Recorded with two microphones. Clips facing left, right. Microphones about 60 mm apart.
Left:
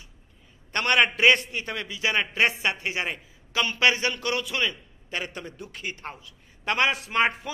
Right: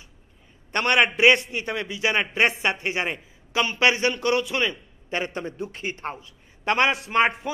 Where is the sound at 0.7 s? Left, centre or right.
Right.